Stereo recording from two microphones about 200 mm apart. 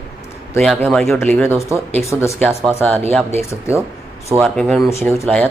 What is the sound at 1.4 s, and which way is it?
Speech, 15° left (ahead or behind).